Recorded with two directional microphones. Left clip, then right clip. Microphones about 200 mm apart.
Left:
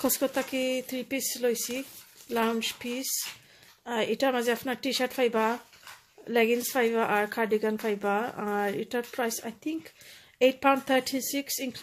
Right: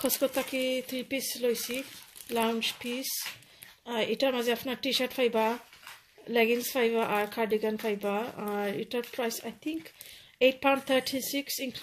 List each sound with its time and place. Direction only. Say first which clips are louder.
0.0 s speech: left 1 dB; 10° left (ahead or behind)